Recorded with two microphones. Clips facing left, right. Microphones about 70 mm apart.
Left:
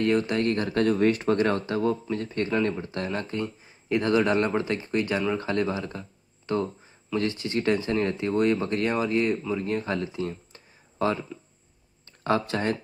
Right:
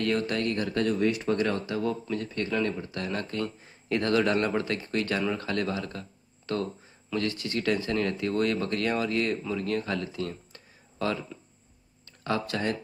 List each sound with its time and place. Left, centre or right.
0.0 s speech: left
0.5 s speech: left